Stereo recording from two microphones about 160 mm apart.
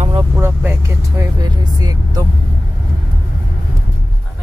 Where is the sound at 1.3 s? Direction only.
25° right (ahead or behind).